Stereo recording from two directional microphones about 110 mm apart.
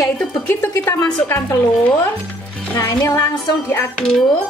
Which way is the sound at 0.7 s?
30° left (ahead or behind).